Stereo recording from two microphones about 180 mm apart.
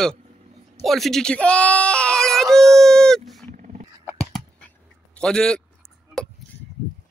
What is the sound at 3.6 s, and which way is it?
Dog, 40° right (ahead or behind).